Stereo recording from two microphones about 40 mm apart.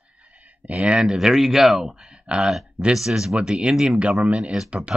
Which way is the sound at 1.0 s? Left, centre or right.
Centre.